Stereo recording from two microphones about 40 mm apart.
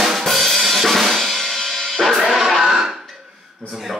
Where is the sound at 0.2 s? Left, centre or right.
Centre.